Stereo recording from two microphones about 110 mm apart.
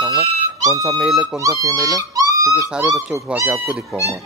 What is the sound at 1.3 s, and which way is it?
Speech, 30° right (ahead or behind).